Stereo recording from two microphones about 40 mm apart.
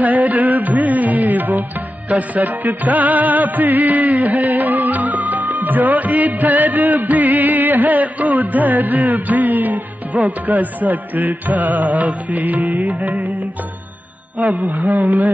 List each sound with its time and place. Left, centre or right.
0.0 s music: right
14.4 s music: right